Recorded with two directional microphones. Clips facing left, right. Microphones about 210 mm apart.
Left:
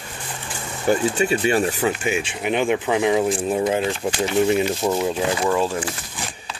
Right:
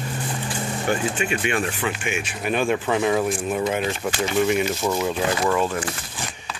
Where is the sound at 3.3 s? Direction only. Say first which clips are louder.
Left 3 dB; 30° left (ahead or behind).